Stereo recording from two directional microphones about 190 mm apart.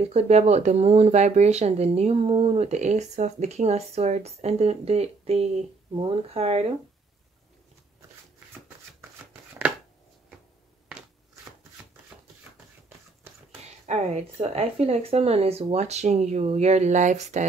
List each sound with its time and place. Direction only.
0.0 s speech: 35° right (ahead or behind)
12.1 s a sound: 5° right (ahead or behind)
13.8 s speech: 35° right (ahead or behind)